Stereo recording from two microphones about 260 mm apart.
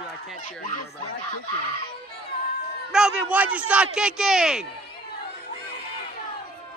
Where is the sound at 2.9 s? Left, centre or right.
Centre.